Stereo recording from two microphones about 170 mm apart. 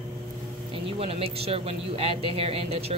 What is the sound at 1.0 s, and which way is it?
Speech, 35° right (ahead or behind).